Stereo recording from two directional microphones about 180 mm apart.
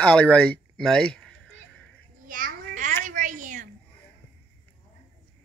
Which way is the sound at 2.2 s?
50° right (ahead or behind).